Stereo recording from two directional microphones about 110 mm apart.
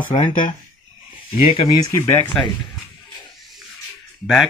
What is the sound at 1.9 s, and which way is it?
Speech, 20° left (ahead or behind).